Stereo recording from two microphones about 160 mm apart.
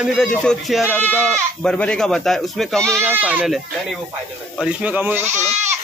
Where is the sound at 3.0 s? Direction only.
10° right (ahead or behind).